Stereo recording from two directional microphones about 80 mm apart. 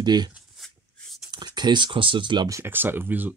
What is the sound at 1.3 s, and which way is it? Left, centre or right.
Speech, right.